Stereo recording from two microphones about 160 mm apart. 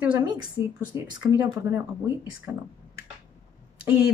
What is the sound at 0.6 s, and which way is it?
Speech, 30° left (ahead or behind).